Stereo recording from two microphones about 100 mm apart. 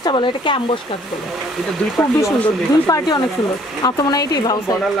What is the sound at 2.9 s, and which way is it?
Speech, 35° left (ahead or behind).